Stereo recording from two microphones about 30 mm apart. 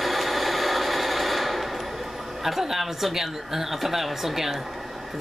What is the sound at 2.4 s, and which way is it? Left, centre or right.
Speech, centre.